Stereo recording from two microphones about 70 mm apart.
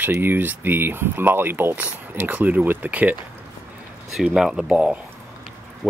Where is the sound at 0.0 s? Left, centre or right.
Right.